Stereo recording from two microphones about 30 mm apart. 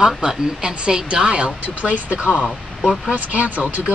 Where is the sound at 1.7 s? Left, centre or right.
Right.